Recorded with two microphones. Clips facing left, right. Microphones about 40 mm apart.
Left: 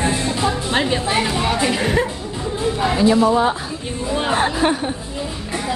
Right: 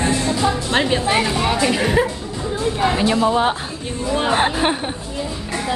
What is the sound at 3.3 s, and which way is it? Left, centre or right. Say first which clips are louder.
Speech: left 1 dB; right.